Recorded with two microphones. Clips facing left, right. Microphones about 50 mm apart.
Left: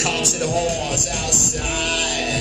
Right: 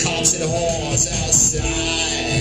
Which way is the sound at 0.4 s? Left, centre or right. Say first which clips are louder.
Right 1 dB; left.